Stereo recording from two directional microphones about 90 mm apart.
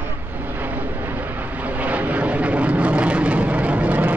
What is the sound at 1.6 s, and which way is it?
Vehicle, 15° right (ahead or behind).